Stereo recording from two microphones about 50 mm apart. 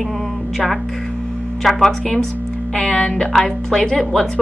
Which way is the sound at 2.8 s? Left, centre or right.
Centre.